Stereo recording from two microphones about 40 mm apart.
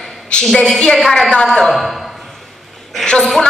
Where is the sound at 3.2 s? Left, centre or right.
Centre.